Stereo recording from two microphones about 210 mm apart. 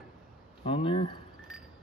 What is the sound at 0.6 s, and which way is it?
Speech, 25° left (ahead or behind).